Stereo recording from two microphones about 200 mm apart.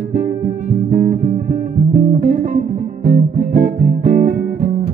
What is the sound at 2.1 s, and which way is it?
Music, 40° right (ahead or behind).